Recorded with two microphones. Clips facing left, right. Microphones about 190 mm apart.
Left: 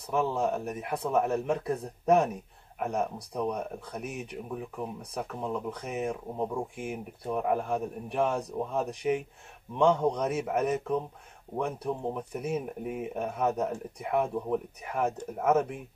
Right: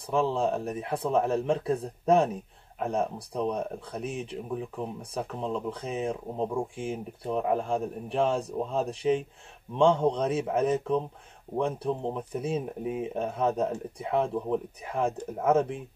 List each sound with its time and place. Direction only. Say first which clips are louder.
0.1 s speech: right 2 dB; 30° right (ahead or behind)